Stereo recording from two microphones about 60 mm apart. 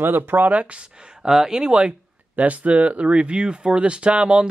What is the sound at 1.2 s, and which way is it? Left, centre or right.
Speech, centre.